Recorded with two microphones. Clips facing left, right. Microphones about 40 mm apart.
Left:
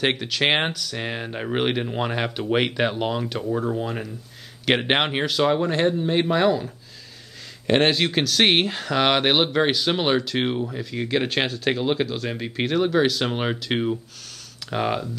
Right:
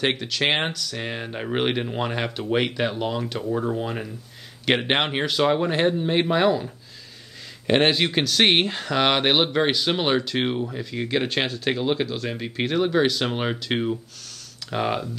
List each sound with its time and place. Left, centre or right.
0.0 s speech: centre
5.6 s speech: centre